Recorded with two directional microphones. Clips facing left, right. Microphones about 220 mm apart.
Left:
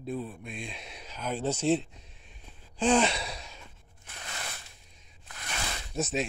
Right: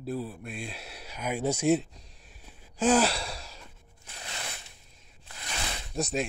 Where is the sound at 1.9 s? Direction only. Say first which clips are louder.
Even; 35° right (ahead or behind).